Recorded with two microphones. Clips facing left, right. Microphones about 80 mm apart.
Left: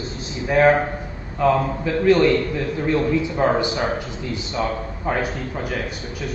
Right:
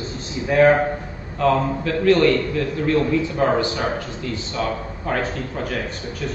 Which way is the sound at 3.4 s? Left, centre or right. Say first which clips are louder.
Left 1 dB; centre.